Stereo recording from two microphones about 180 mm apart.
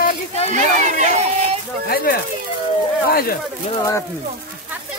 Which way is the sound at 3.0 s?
55° left (ahead or behind).